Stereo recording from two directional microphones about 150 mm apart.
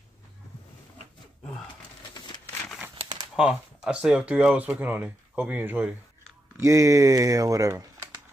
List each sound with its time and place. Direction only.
3.3 s speech: 5° right (ahead or behind)
6.6 s speech: 20° right (ahead or behind)